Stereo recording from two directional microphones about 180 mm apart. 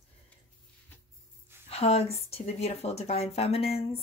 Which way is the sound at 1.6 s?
35° left (ahead or behind).